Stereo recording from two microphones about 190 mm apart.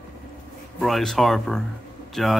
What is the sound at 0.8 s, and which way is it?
A man's voice, centre (ahead or behind).